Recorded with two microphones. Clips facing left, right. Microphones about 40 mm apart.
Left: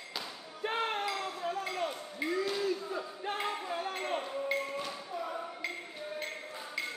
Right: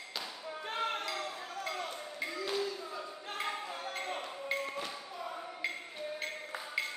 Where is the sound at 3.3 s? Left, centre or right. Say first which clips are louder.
Left 1 dB; centre.